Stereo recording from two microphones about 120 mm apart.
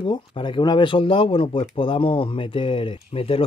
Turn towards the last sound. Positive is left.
turn(degrees=50)  # may be behind; listen again after turning